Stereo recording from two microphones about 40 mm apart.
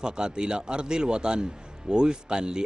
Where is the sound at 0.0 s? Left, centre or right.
Right.